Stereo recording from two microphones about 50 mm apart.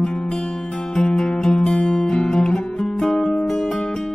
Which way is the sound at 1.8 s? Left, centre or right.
Centre.